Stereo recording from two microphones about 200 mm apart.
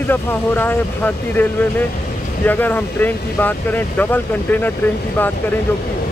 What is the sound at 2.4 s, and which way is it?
Speech, 10° left (ahead or behind).